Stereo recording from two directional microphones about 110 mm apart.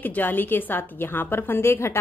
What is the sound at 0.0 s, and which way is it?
A woman's voice, 15° left (ahead or behind).